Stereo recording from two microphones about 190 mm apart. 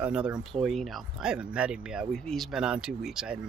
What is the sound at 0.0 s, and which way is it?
Speech, 5° right (ahead or behind).